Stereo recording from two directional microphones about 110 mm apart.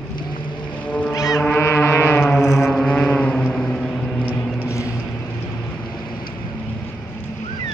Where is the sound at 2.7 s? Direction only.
10° left (ahead or behind).